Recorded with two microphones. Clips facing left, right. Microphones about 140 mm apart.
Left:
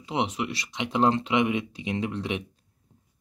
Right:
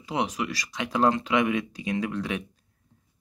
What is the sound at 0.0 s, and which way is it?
Speech, 25° left (ahead or behind).